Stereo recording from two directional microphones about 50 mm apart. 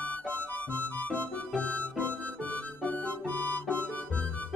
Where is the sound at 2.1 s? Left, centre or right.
Left.